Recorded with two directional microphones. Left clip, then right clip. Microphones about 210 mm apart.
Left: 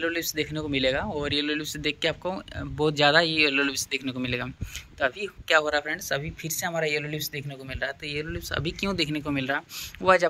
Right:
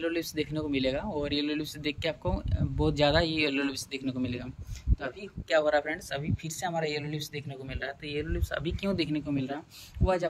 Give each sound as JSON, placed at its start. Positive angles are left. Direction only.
{"t": 0.0, "sound": "speech", "side_deg": -10}
{"t": 5.5, "sound": "speech", "side_deg": -10}